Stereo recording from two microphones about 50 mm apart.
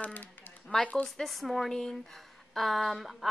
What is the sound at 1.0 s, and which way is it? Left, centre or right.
A woman's voice, centre.